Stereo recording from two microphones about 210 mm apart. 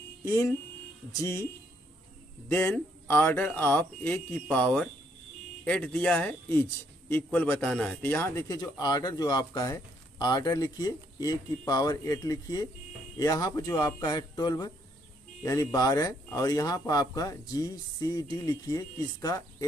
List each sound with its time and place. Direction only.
0.2 s a man's voice: 10° left (ahead or behind)
2.5 s a man's voice: 10° left (ahead or behind)